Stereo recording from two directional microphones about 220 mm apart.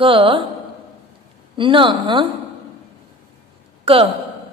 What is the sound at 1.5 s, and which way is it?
Speech, 20° right (ahead or behind).